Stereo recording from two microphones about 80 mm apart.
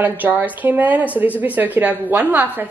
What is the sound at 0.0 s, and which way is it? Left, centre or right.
A woman's voice, right.